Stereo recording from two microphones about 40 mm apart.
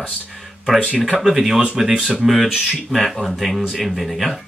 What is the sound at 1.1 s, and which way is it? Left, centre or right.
Speech, centre.